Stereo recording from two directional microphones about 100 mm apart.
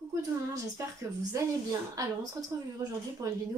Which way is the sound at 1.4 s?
30° right (ahead or behind).